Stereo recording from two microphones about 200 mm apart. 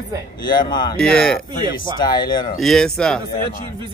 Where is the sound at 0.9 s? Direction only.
5° left (ahead or behind).